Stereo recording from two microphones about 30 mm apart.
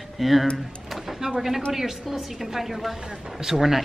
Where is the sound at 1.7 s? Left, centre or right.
Centre.